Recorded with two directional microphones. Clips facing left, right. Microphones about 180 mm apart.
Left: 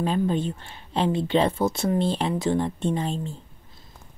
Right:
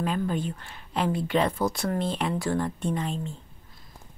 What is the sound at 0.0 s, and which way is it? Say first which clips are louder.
Speech: left 4 dB; 30° left (ahead or behind).